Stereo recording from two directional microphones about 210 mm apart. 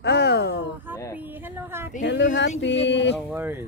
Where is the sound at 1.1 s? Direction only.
10° right (ahead or behind).